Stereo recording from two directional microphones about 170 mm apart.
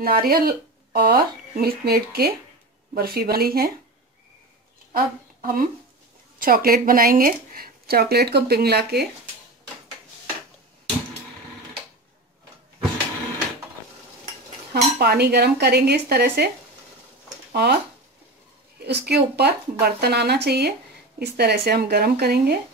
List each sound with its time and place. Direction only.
0.0 s speech: 60° right (ahead or behind)
4.9 s speech: 55° right (ahead or behind); by 9.0 s 70° right (ahead or behind)
14.7 s speech: 70° right (ahead or behind)
17.5 s speech: 65° right (ahead or behind)
18.8 s speech: 80° right